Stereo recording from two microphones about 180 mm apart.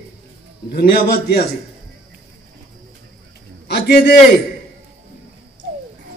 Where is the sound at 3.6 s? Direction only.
65° left (ahead or behind).